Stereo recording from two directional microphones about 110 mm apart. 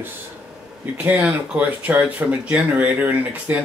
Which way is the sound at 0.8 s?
15° right (ahead or behind).